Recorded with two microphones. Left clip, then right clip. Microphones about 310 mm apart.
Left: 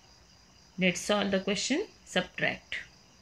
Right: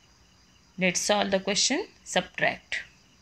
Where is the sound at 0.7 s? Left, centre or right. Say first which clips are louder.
Right 4 dB; centre.